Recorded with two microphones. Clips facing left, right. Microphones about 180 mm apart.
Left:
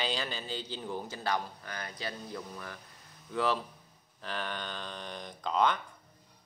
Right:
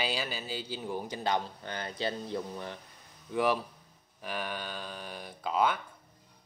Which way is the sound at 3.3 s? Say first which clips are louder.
Right 2 dB; 15° right (ahead or behind).